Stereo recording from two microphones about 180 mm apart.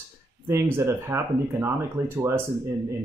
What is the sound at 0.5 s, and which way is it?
Speech, 15° right (ahead or behind).